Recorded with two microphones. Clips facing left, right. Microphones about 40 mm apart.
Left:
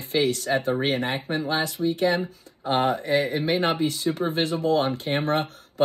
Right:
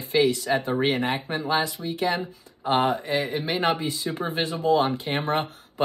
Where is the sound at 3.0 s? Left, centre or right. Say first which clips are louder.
Left 3 dB; right.